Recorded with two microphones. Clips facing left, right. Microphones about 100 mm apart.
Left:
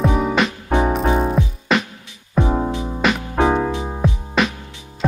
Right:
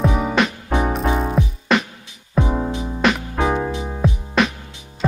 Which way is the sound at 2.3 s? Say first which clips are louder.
Left 2 dB; 20° left (ahead or behind).